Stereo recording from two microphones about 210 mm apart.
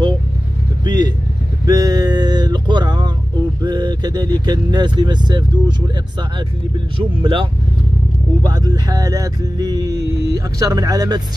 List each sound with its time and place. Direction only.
0.8 s vehicle: 20° right (ahead or behind)
1.7 s a sound: 15° right (ahead or behind)
3.6 s speech: 20° right (ahead or behind)
7.0 s speech: 25° right (ahead or behind)